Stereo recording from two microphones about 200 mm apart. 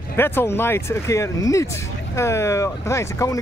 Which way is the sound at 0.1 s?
10° left (ahead or behind).